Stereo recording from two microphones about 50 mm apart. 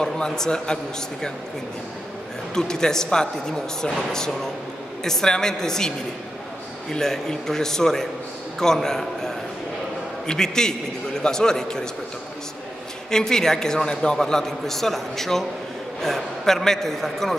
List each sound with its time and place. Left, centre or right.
0.0 s a man's voice: centre
2.5 s a man's voice: centre
13.1 s a man's voice: centre